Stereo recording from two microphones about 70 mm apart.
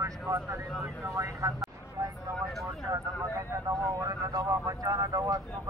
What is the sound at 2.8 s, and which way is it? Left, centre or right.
Vehicle, right.